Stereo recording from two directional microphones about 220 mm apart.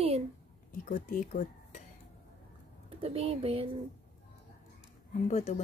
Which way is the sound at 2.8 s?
25° right (ahead or behind).